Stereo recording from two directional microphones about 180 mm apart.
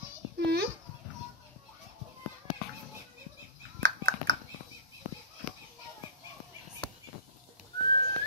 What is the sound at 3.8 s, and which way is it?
Dog, 90° right.